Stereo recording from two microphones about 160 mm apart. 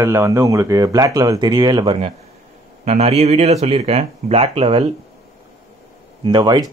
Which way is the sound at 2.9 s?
40° right (ahead or behind).